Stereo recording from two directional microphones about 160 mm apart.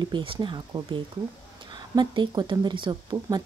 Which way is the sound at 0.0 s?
30° right (ahead or behind).